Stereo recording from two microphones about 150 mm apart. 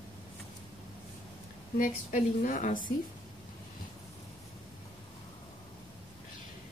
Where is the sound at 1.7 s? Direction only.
65° left (ahead or behind).